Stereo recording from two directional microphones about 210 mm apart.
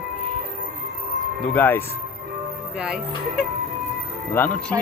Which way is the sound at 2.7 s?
5° right (ahead or behind).